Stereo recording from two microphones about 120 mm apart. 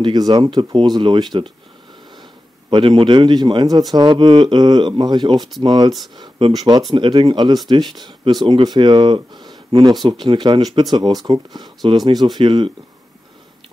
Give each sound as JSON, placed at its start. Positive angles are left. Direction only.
{"t": 0.0, "sound": "speech", "side_deg": -35}
{"t": 2.7, "sound": "speech", "side_deg": -45}
{"t": 6.9, "sound": "speech", "side_deg": -45}